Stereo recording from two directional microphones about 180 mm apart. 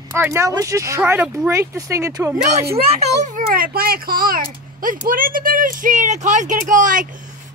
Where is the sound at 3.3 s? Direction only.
55° right (ahead or behind).